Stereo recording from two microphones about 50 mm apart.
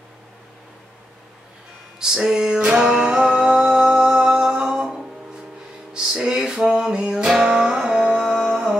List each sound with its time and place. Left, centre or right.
2.0 s music: centre
5.9 s music: centre